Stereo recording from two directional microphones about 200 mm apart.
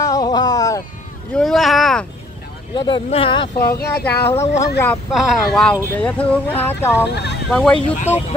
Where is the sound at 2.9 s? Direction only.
25° left (ahead or behind).